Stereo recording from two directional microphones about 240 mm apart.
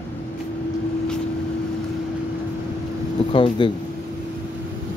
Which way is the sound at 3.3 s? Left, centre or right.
Left.